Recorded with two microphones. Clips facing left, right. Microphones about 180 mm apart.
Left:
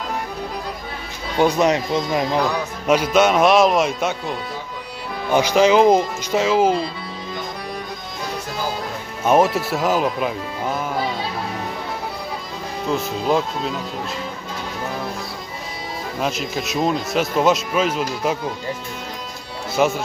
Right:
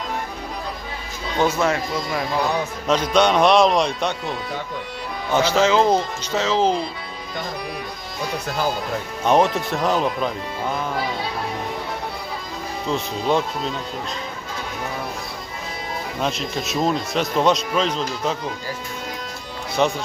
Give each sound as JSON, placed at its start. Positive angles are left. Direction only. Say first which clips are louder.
{"t": 1.4, "sound": "speech", "louder": "left 3 dB", "side_deg": 15}
{"t": 2.9, "sound": "speech", "louder": "left 2 dB", "side_deg": 5}
{"t": 9.2, "sound": "speech", "louder": "left 2 dB", "side_deg": 5}
{"t": 12.8, "sound": "speech", "louder": "left 2 dB", "side_deg": 0}
{"t": 16.2, "sound": "speech", "louder": "left 1 dB", "side_deg": 0}
{"t": 19.7, "sound": "speech", "louder": "left 2 dB", "side_deg": 5}